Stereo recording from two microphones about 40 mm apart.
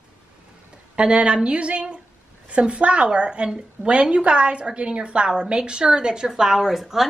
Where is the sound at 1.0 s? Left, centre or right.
Right.